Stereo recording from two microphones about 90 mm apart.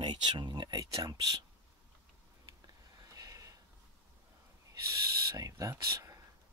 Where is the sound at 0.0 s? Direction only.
60° right (ahead or behind).